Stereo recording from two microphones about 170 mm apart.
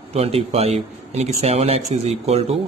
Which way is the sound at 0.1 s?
35° right (ahead or behind).